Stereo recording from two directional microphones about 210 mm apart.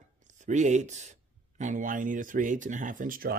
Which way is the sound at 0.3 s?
35° right (ahead or behind).